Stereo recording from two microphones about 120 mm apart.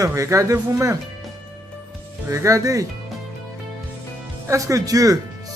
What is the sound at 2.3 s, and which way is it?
Speech, 25° right (ahead or behind).